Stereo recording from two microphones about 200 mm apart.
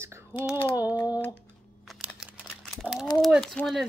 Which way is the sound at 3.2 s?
Centre (ahead or behind).